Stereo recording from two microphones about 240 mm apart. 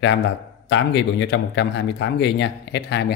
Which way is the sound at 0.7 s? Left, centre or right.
Left.